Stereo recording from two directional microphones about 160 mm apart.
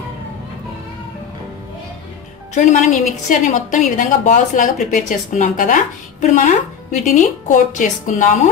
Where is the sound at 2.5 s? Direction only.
50° left (ahead or behind).